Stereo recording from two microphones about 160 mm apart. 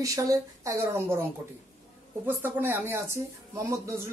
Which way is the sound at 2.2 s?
10° right (ahead or behind).